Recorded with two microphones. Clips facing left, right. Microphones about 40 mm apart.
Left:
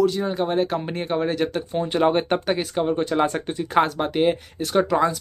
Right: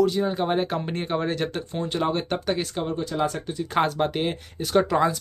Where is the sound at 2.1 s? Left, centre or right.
Left.